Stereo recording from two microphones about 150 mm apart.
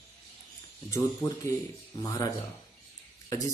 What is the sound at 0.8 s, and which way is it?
Speech, 20° left (ahead or behind).